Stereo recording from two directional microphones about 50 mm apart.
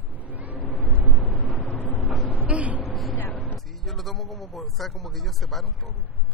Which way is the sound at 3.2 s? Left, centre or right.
Left.